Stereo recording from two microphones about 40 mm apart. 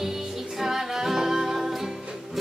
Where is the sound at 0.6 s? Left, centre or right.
Centre.